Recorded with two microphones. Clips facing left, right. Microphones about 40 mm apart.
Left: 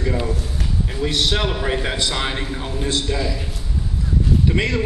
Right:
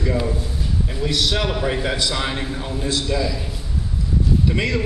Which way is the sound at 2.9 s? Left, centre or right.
Left.